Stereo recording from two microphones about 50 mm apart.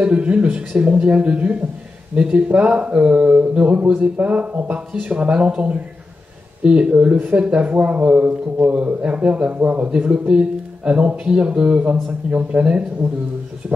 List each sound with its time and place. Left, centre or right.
0.0 s speech: right
9.8 s speech: right